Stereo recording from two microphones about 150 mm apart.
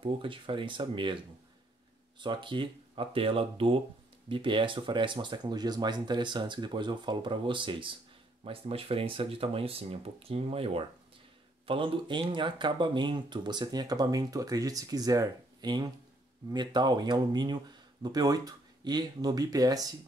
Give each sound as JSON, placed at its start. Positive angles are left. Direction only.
{"t": 0.0, "sound": "speech", "side_deg": -35}